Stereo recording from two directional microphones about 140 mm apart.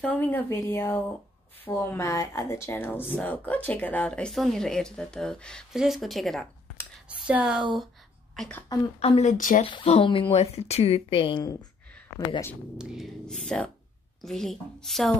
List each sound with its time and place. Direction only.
0.0 s a woman's voice: 10° left (ahead or behind); by 7.6 s 5° right (ahead or behind)
8.4 s a woman's voice: 10° left (ahead or behind)
9.2 s speech: 70° left (ahead or behind)
9.8 s speech: 40° left (ahead or behind)
12.7 s speech: centre (ahead or behind)